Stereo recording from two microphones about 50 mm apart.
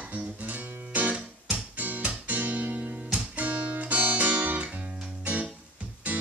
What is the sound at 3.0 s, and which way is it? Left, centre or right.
Music, right.